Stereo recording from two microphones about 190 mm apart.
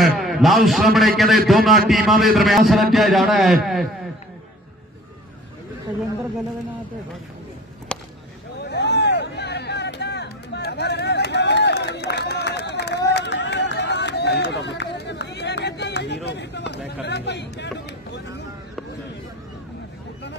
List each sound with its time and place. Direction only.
0.0 s a man's voice: centre (ahead or behind)
7.9 s a sound: 5° left (ahead or behind)
8.6 s music: 65° left (ahead or behind)